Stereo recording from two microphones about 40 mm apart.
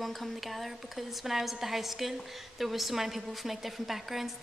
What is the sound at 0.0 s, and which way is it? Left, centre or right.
Speech, centre.